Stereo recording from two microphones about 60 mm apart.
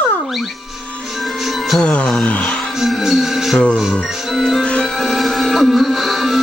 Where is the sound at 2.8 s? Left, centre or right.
Centre.